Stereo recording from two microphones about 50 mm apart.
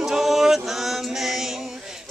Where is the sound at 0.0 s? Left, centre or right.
Centre.